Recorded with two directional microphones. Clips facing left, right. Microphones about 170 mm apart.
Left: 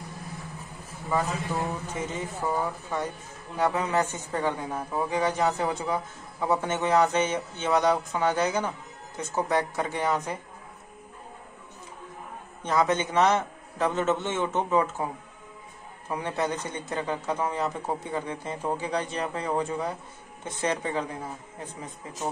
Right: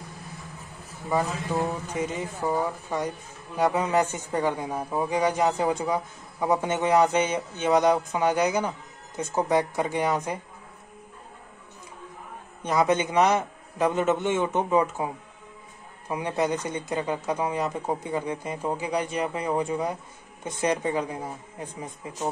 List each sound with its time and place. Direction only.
2.0 s a man's voice: 15° right (ahead or behind)
12.6 s a man's voice: 15° right (ahead or behind)
16.1 s a man's voice: 15° right (ahead or behind)